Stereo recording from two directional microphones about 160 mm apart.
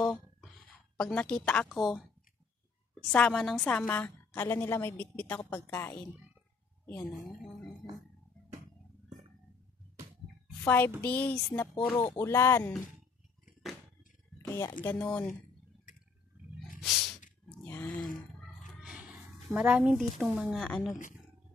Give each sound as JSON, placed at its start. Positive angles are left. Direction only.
{"t": 0.0, "sound": "a sound", "side_deg": 0}
{"t": 0.9, "sound": "a woman's voice", "side_deg": 5}
{"t": 7.0, "sound": "a woman's voice", "side_deg": 0}
{"t": 10.6, "sound": "a woman's voice", "side_deg": 10}
{"t": 14.4, "sound": "a sound", "side_deg": 15}
{"t": 14.9, "sound": "a woman's voice", "side_deg": 5}
{"t": 16.8, "sound": "snort", "side_deg": 0}
{"t": 17.6, "sound": "groan", "side_deg": 10}
{"t": 18.0, "sound": "a sound", "side_deg": 60}
{"t": 18.8, "sound": "a woman's voice", "side_deg": -5}